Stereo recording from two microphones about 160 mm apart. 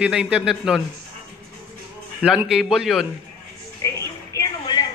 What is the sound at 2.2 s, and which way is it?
Speech, centre (ahead or behind).